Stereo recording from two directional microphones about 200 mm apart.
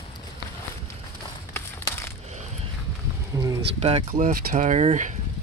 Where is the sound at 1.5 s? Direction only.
15° left (ahead or behind).